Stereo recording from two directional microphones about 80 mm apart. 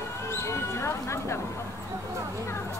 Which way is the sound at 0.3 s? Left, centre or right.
Left.